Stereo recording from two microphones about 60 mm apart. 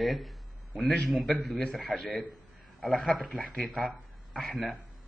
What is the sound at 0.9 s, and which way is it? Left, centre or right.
Speech, centre.